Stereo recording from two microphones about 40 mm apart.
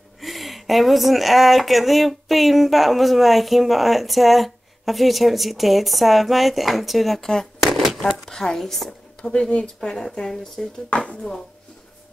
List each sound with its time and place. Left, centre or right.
0.2 s speech: centre
7.6 s a sound: centre
8.0 s speech: centre
9.2 s speech: left